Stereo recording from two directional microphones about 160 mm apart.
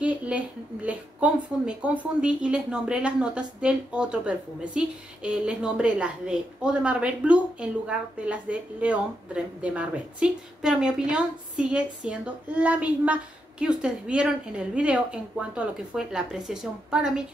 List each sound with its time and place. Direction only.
0.0 s speech: 10° right (ahead or behind)